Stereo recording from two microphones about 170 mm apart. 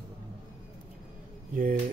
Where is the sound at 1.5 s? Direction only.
55° right (ahead or behind).